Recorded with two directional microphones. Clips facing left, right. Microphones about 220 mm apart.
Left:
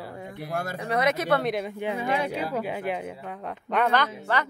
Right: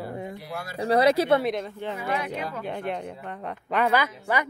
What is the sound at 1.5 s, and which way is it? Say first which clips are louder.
A woman's voice: left 1 dB; 10° left (ahead or behind).